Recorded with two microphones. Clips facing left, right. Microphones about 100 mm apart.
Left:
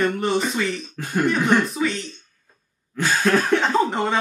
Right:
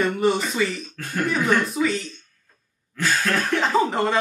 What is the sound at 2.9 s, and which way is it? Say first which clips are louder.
Cough: left 4 dB; 20° left (ahead or behind).